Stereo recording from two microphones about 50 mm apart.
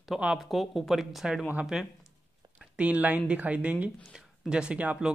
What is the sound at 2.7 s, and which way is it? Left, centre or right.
Speech, right.